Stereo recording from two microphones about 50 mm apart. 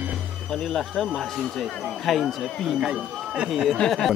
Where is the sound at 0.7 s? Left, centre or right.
Centre.